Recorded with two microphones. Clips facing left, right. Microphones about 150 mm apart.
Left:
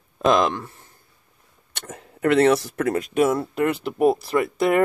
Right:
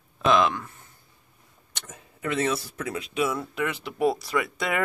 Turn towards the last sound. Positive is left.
turn(degrees=45)  # may be behind; listen again after turning